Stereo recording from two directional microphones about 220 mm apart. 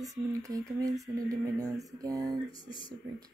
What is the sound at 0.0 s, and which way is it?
Speech, 15° right (ahead or behind).